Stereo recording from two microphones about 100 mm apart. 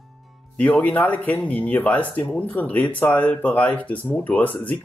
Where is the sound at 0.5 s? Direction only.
15° left (ahead or behind).